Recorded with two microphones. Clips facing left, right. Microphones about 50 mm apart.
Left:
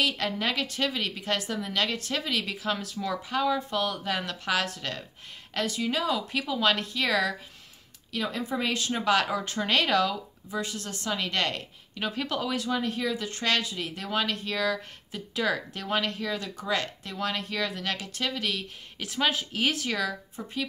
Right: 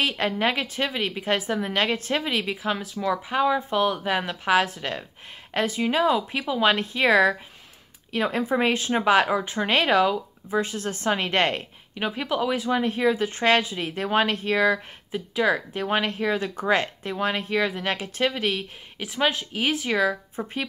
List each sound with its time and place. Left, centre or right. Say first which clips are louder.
0.0 s speech: right 4 dB; right
5.5 s speech: right 5 dB; right
11.9 s speech: right 4 dB; centre
15.0 s speech: right 6 dB; centre
18.9 s speech: right 3 dB; centre; by 20.6 s right